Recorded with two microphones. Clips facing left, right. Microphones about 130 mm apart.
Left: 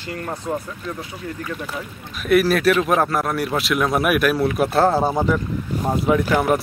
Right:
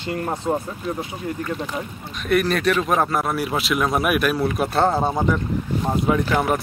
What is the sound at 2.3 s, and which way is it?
Speech, 5° left (ahead or behind).